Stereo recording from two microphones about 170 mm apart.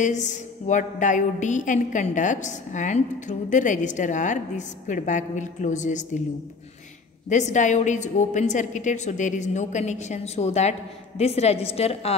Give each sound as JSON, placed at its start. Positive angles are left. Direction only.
{"t": 0.0, "sound": "a woman's voice", "side_deg": 45}
{"t": 7.2, "sound": "a woman's voice", "side_deg": 45}